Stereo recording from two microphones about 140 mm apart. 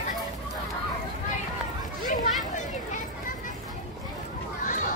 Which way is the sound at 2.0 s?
60° left (ahead or behind).